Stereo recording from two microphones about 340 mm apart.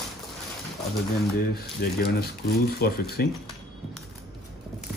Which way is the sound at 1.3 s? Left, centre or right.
Left.